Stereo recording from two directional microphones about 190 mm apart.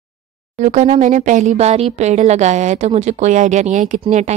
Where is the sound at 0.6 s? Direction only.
40° right (ahead or behind).